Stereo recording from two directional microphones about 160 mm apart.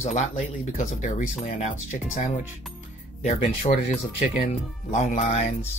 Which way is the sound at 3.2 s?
45° left (ahead or behind).